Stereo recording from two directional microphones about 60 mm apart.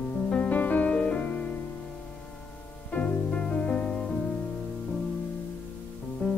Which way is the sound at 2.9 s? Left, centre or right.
Left.